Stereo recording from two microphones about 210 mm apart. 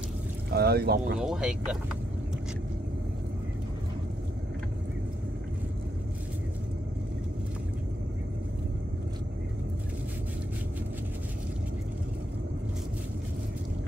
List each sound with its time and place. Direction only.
0.5 s speech: 50° right (ahead or behind)
1.2 s speech: 5° right (ahead or behind)